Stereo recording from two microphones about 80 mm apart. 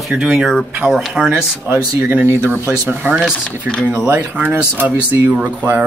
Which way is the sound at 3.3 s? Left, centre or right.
Centre.